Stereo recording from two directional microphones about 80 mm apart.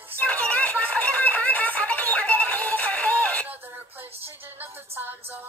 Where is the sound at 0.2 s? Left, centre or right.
Centre.